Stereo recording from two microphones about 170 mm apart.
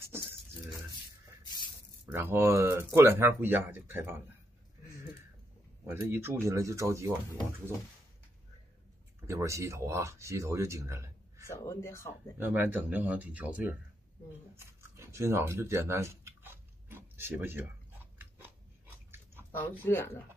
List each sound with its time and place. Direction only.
1.4 s spray: 25° left (ahead or behind)
2.0 s speech: 15° right (ahead or behind)
5.9 s speech: 15° right (ahead or behind)
9.3 s speech: 15° right (ahead or behind)
11.4 s speech: 15° left (ahead or behind)
12.4 s speech: 10° right (ahead or behind)
14.6 s a sound: 15° right (ahead or behind)
19.5 s speech: 10° left (ahead or behind)